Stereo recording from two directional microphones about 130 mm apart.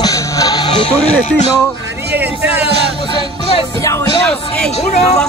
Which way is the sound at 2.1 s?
15° right (ahead or behind).